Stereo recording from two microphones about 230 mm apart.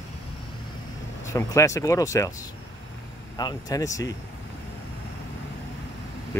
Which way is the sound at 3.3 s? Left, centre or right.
Centre.